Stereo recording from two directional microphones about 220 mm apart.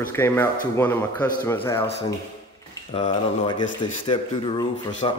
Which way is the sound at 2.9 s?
25° left (ahead or behind).